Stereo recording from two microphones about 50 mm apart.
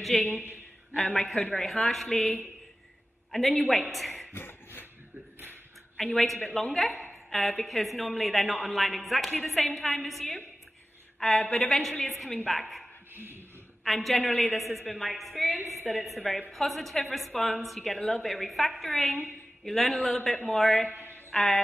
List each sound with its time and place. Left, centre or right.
0.0 s a woman's voice: centre
3.3 s a woman's voice: centre
4.3 s a sound: left
6.1 s a woman's voice: centre
13.1 s dog: right
13.8 s a woman's voice: centre